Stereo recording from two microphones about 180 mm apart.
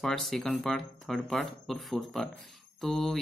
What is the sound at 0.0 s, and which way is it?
Speech, centre (ahead or behind).